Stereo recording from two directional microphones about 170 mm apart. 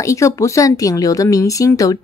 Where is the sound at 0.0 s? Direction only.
15° left (ahead or behind).